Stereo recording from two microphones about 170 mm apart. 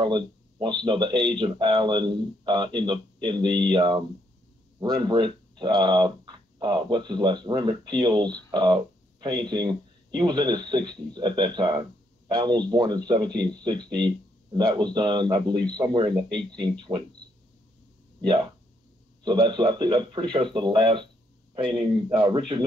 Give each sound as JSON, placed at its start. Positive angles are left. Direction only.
{"t": 0.0, "sound": "speech", "side_deg": -25}
{"t": 18.2, "sound": "speech", "side_deg": -25}
{"t": 22.1, "sound": "speech", "side_deg": -30}